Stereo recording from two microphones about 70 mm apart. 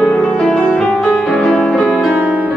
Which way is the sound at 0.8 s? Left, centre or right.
Centre.